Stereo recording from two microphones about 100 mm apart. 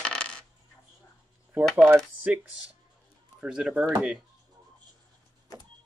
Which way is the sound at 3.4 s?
10° right (ahead or behind).